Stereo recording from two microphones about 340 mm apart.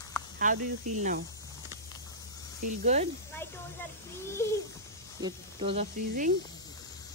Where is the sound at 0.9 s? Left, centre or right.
Right.